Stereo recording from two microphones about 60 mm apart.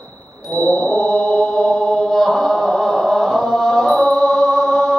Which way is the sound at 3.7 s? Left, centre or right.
Centre.